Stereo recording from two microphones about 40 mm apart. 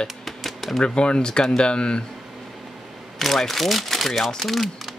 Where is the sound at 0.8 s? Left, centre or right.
Left.